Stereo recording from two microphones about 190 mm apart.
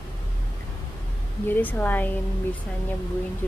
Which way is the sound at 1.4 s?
10° left (ahead or behind).